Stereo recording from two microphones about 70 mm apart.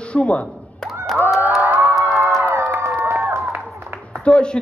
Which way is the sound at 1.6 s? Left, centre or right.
Right.